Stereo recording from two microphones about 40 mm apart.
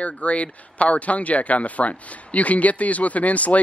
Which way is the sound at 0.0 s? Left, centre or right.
Left.